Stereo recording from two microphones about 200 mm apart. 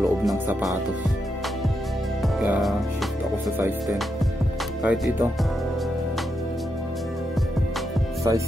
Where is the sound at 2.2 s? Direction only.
Centre (ahead or behind).